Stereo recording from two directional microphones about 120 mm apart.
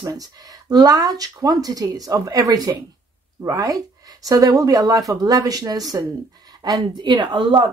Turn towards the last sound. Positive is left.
turn(degrees=-40)  # may be behind; listen again after turning